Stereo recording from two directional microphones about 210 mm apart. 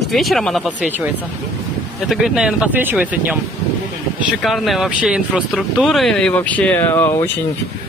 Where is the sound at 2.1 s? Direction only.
Centre (ahead or behind).